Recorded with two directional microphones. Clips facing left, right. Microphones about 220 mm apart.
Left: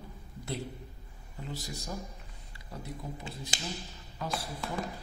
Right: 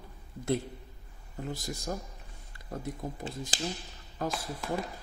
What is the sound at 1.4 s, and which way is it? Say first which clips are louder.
A man's voice: right 4 dB; 50° right (ahead or behind).